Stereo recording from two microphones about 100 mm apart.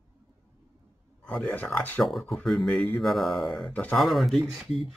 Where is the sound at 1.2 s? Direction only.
5° left (ahead or behind).